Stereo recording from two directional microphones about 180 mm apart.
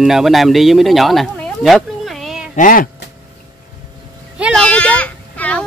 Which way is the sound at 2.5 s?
45° left (ahead or behind).